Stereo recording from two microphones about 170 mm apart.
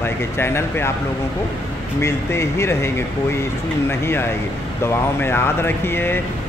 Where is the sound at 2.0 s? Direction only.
15° left (ahead or behind).